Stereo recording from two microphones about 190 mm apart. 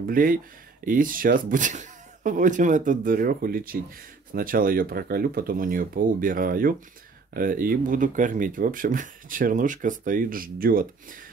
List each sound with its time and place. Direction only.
0.1 s speech: 45° right (ahead or behind)